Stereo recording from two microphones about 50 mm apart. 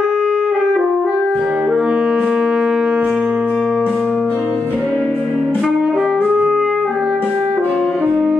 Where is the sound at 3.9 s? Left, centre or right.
Left.